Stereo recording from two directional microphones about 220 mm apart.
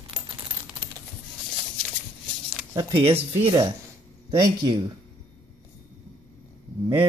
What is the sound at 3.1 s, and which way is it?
A man's voice, 25° right (ahead or behind).